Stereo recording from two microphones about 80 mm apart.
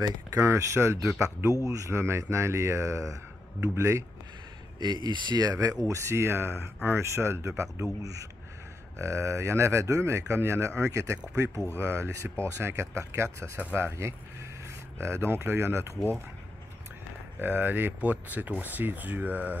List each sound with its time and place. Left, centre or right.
0.0 s speech: right
0.5 s speech: right
4.7 s speech: right
5.9 s speech: right
17.4 s speech: right